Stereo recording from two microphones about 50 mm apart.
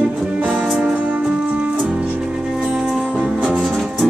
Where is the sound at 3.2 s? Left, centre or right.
Centre.